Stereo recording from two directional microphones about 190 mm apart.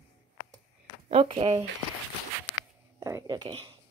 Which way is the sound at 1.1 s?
30° right (ahead or behind).